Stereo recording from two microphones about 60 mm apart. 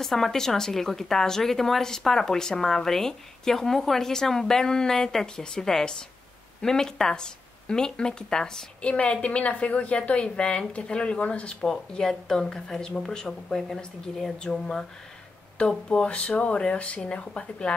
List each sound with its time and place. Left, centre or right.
0.0 s a woman's voice: centre
15.9 s speech: centre